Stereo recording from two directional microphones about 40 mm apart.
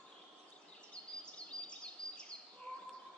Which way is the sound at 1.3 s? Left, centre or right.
Left.